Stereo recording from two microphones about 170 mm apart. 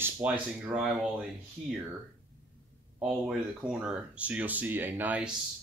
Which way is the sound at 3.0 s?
5° right (ahead or behind).